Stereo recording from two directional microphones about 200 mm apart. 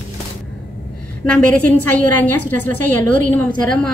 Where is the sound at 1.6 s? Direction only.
10° left (ahead or behind).